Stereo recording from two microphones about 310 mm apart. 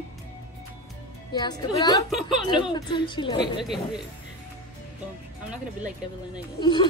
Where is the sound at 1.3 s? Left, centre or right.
Centre.